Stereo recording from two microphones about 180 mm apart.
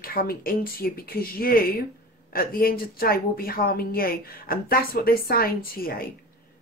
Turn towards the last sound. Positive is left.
turn(degrees=55)  # may be behind; listen again after turning